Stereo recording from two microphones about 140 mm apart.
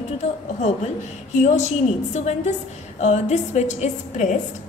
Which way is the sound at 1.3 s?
55° left (ahead or behind).